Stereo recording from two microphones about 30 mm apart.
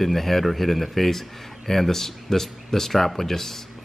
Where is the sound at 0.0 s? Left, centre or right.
Centre.